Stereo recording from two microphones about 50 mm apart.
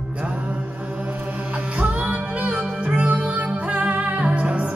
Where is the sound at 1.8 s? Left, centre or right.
Right.